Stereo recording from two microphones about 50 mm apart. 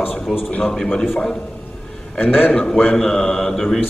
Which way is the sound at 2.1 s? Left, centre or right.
Centre.